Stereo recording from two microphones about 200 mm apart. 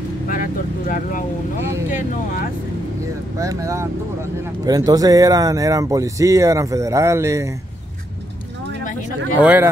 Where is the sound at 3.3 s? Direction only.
15° right (ahead or behind).